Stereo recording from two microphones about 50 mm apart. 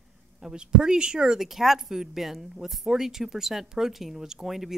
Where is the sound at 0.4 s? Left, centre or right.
Centre.